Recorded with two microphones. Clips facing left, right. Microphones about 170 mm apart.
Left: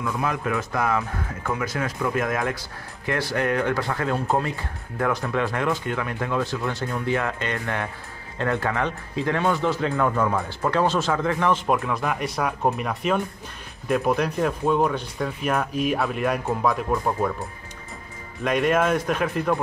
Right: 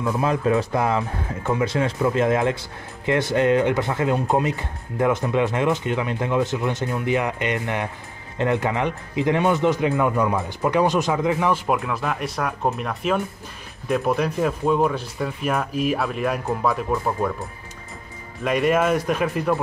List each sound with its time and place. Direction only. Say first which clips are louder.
0.0 s speech: right 5 dB; 25° right (ahead or behind); by 19.6 s 5° right (ahead or behind)